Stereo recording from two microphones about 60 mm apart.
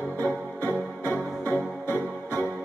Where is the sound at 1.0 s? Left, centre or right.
Left.